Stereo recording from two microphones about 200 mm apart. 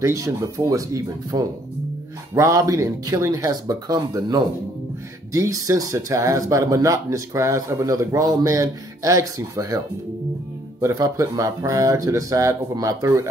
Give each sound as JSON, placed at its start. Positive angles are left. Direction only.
{"t": 0.0, "sound": "speech", "side_deg": -15}
{"t": 10.8, "sound": "speech", "side_deg": -15}